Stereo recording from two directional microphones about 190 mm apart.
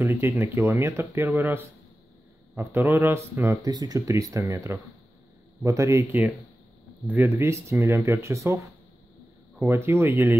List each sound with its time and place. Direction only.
0.0 s speech: 15° right (ahead or behind)
9.6 s speech: 10° right (ahead or behind)